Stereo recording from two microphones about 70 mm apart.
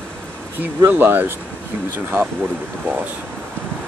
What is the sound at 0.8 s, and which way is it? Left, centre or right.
Speech, right.